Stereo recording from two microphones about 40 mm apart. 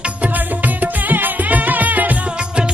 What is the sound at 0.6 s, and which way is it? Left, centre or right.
Music, right.